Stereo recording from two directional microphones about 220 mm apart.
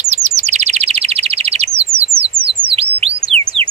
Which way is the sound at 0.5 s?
30° right (ahead or behind).